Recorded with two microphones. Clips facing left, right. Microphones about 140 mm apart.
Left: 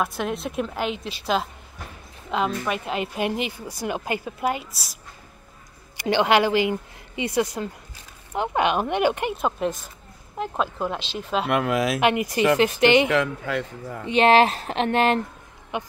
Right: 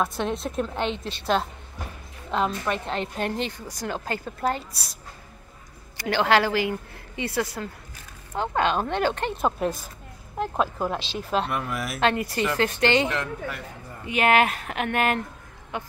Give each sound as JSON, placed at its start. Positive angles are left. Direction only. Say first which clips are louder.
{"t": 0.0, "sound": "a woman's voice", "louder": "even", "side_deg": 5}
{"t": 5.9, "sound": "a woman's voice", "louder": "left 2 dB", "side_deg": 20}
{"t": 9.4, "sound": "a woman's voice", "louder": "even", "side_deg": -5}
{"t": 11.4, "sound": "a man's voice", "louder": "left 7 dB", "side_deg": 90}
{"t": 12.0, "sound": "a woman's voice", "louder": "left 3 dB", "side_deg": 15}
{"t": 13.1, "sound": "a man's voice", "louder": "left 7 dB", "side_deg": 90}
{"t": 14.0, "sound": "a woman's voice", "louder": "left 4 dB", "side_deg": 30}